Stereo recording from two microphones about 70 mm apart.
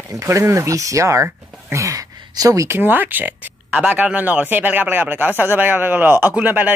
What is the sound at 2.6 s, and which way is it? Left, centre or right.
Speech, right.